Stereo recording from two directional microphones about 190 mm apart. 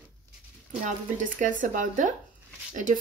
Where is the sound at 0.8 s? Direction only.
45° right (ahead or behind).